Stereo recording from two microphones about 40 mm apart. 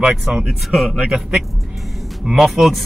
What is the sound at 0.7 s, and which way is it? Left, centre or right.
Speech, centre.